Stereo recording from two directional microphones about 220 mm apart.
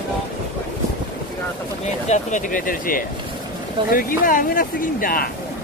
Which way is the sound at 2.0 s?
35° left (ahead or behind).